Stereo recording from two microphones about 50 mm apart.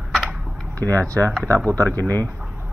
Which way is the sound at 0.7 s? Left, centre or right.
Left.